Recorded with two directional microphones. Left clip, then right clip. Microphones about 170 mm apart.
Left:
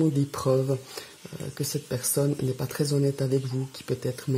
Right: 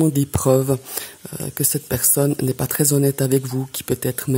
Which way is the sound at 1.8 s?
30° right (ahead or behind).